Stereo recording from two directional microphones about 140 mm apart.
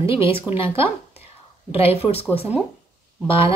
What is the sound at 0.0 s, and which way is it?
Speech, 40° left (ahead or behind).